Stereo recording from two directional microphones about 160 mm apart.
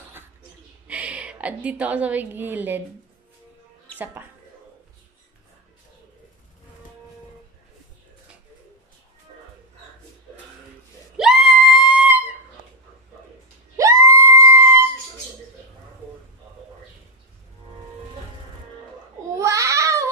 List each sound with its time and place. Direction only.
0.8 s a woman's voice: 10° right (ahead or behind)
11.1 s screaming: centre (ahead or behind)
13.7 s a sound: 20° right (ahead or behind)
19.3 s babbling: 20° right (ahead or behind)